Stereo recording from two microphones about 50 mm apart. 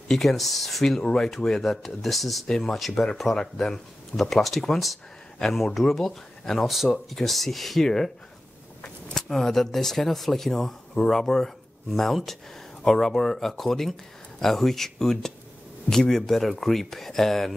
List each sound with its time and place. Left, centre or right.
0.1 s speech: centre
2.4 s speech: centre